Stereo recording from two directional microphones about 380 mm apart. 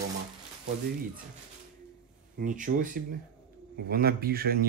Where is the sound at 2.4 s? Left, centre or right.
Centre.